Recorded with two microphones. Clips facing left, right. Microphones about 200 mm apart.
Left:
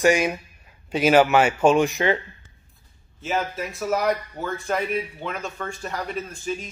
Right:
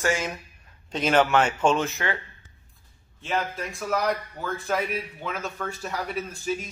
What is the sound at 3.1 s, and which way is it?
Speech, 5° left (ahead or behind).